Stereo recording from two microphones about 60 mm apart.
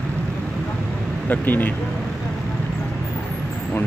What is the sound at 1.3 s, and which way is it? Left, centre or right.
Speech, left.